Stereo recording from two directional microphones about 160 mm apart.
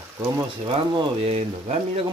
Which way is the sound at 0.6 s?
30° right (ahead or behind).